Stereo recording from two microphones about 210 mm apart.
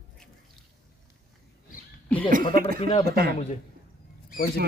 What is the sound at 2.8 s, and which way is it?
Speech, 25° left (ahead or behind).